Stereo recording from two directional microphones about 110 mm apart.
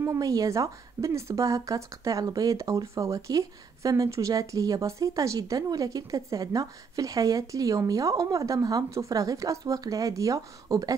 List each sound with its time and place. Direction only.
0.0 s a woman's voice: 30° right (ahead or behind)